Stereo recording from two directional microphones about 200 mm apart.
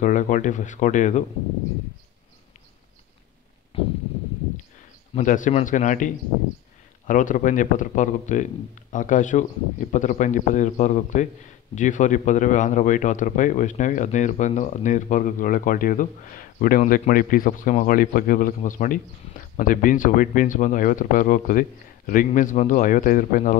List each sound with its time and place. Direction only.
0.0 s a man's voice: 40° left (ahead or behind)
3.7 s a sound: 30° left (ahead or behind)
5.1 s a man's voice: 40° left (ahead or behind)